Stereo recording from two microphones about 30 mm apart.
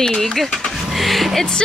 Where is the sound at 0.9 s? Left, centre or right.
Centre.